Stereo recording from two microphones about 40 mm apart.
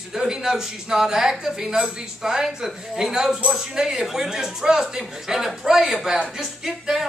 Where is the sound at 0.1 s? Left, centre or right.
Centre.